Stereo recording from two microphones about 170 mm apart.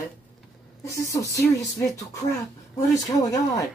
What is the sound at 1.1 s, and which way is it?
Speech, 20° left (ahead or behind).